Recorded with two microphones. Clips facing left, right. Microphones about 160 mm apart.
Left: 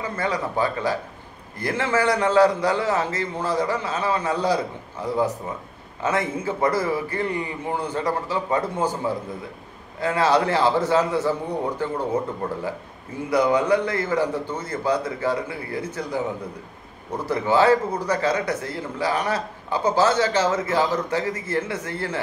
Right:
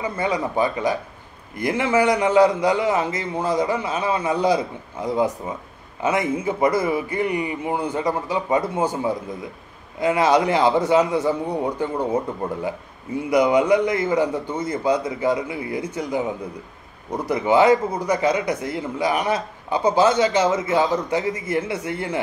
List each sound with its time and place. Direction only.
0.0 s a man's voice: 15° right (ahead or behind)
9.9 s a man's voice: 15° right (ahead or behind)
13.3 s a man's voice: 15° right (ahead or behind)
17.3 s a man's voice: 15° right (ahead or behind)